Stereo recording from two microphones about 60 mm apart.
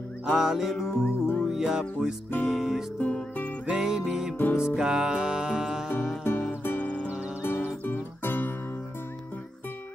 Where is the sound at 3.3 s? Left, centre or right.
Left.